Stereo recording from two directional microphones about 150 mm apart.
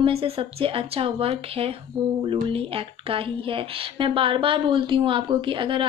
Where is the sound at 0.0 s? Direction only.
40° right (ahead or behind).